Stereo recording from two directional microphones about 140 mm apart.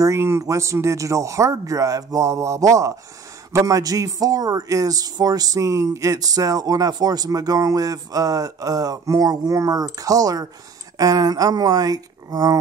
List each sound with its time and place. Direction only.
0.0 s a man's voice: 20° right (ahead or behind)